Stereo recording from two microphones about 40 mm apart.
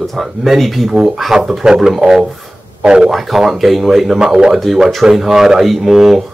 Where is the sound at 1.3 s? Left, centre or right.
Centre.